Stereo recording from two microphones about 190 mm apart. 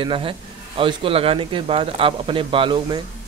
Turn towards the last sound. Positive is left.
turn(degrees=-25)  # may be behind; listen again after turning